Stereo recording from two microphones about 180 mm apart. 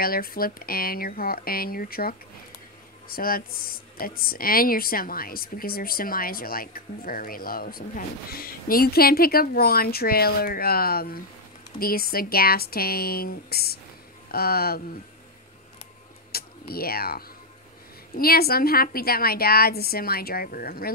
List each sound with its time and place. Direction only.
0.0 s speech: 55° left (ahead or behind)
16.3 s a sound: 55° left (ahead or behind)
18.1 s speech: 55° left (ahead or behind)